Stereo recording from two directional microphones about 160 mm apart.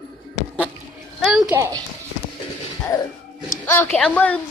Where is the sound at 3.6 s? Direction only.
10° left (ahead or behind).